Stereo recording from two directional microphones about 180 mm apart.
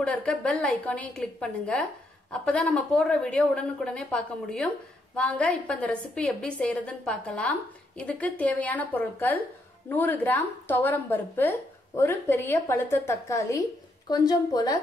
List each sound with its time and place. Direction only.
0.0 s a woman's voice: 5° left (ahead or behind)